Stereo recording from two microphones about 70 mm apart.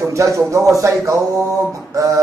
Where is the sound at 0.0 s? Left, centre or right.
Right.